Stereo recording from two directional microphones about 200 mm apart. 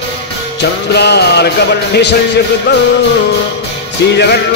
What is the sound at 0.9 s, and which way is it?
Music, 55° left (ahead or behind).